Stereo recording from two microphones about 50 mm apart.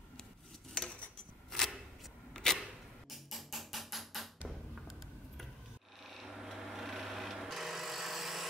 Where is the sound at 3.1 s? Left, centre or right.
Centre.